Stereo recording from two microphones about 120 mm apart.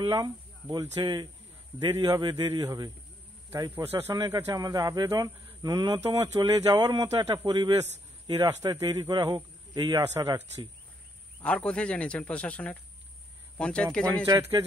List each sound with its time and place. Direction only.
0.0 s a man's voice: 35° right (ahead or behind)
3.7 s speech: 20° right (ahead or behind)
4.1 s a man's voice: 35° right (ahead or behind)
11.4 s speech: 10° left (ahead or behind)